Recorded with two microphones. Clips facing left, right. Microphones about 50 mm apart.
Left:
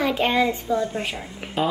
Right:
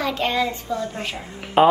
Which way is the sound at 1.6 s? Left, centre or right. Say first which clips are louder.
Right 9 dB; right.